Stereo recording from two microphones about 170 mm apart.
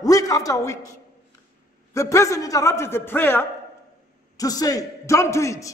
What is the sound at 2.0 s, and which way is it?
A man's voice, 20° left (ahead or behind).